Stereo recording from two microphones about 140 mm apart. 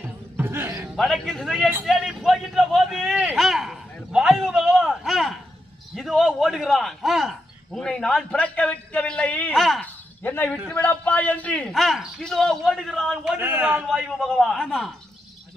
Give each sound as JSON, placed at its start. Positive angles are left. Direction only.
{"t": 0.4, "sound": "basketball bounce", "side_deg": -15}
{"t": 0.9, "sound": "a man's voice", "side_deg": 5}
{"t": 10.2, "sound": "a man's voice", "side_deg": 15}
{"t": 13.4, "sound": "a man's voice", "side_deg": -15}
{"t": 13.8, "sound": "a man's voice", "side_deg": 0}